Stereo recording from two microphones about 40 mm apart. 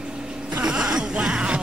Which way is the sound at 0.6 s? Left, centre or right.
Right.